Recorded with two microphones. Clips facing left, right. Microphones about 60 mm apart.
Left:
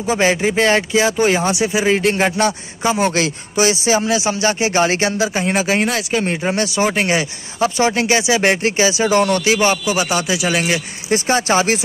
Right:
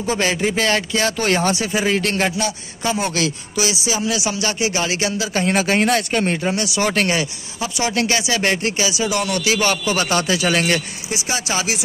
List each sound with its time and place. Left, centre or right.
0.0 s speech: left
0.4 s speech: centre
0.7 s speech: left
5.3 s speech: centre
6.4 s speech: left
6.8 s speech: centre
7.6 s speech: left
7.9 s speech: left
11.1 s speech: left